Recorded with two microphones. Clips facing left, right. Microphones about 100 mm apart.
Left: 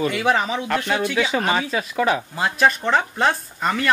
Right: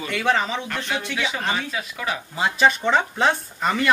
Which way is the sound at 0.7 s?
55° left (ahead or behind).